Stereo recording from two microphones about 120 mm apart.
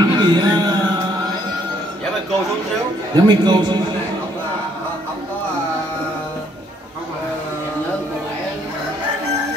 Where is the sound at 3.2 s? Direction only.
40° right (ahead or behind).